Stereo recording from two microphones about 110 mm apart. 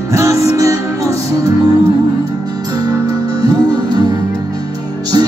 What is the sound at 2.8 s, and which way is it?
Music, 35° right (ahead or behind).